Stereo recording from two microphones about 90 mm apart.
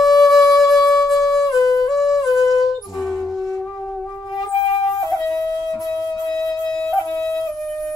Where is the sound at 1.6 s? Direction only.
40° left (ahead or behind).